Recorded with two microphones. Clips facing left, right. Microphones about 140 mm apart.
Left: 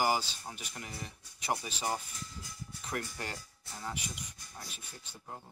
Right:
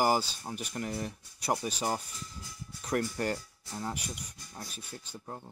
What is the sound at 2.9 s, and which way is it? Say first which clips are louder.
Speech: right 9 dB; 40° right (ahead or behind).